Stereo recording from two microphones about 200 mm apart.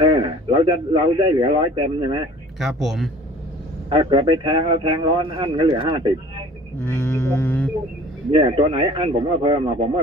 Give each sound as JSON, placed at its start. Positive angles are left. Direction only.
{"t": 0.0, "sound": "a man's voice", "side_deg": -25}
{"t": 2.6, "sound": "speech", "side_deg": 0}
{"t": 3.9, "sound": "speech", "side_deg": -25}
{"t": 6.8, "sound": "a sound", "side_deg": 10}
{"t": 8.3, "sound": "speech", "side_deg": -25}